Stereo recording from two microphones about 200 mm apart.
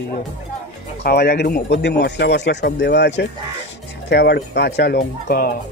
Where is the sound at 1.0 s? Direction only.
55° left (ahead or behind).